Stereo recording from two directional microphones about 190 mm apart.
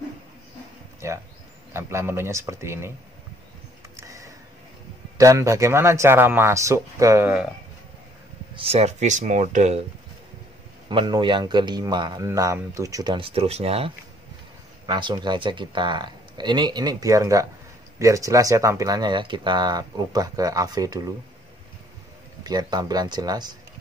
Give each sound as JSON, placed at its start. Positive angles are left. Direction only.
{"t": 1.0, "sound": "a sound", "side_deg": -15}
{"t": 1.7, "sound": "speech", "side_deg": -15}
{"t": 3.9, "sound": "a sound", "side_deg": -15}
{"t": 5.1, "sound": "speech", "side_deg": -15}
{"t": 8.5, "sound": "speech", "side_deg": -30}
{"t": 10.9, "sound": "speech", "side_deg": -25}
{"t": 22.4, "sound": "speech", "side_deg": -20}